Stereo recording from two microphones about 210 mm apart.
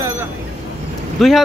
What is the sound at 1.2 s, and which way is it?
Speech, centre (ahead or behind).